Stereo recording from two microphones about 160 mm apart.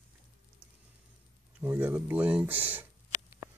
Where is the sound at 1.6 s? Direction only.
15° right (ahead or behind).